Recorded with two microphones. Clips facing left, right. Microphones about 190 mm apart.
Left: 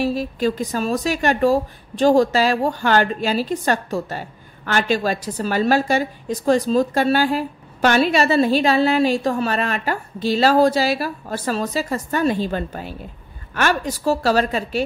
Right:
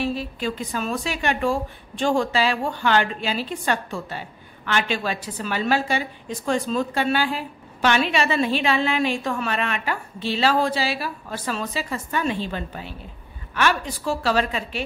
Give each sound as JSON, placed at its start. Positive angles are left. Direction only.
{"t": 0.0, "sound": "a woman's voice", "side_deg": 40}